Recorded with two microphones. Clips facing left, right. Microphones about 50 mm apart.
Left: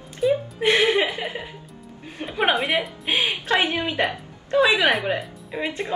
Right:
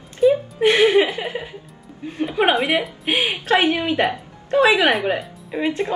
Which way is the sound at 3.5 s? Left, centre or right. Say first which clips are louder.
Right 5 dB; right.